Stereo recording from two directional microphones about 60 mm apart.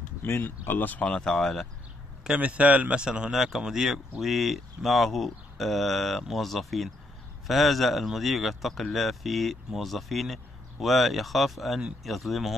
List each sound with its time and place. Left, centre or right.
0.3 s speech: left
1.1 s speech: centre
2.2 s speech: right; by 12.5 s centre